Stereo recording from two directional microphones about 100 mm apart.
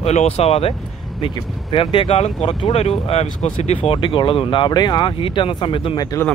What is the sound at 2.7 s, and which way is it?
Speech, 90° left.